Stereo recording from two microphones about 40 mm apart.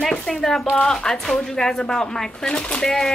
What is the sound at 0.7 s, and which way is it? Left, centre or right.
Speech, centre.